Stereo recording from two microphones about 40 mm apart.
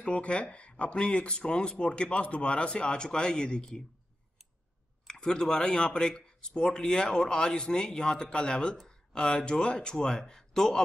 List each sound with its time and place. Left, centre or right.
0.0 s speech: left
5.0 s speech: centre